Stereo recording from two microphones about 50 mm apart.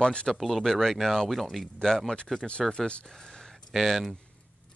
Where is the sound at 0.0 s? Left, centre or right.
Centre.